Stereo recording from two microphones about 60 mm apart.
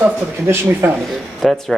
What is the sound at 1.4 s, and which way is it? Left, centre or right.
Speech, centre.